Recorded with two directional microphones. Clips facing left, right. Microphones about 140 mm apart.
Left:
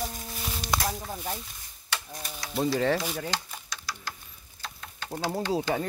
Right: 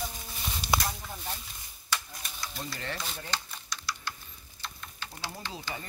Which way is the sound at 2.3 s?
75° left (ahead or behind).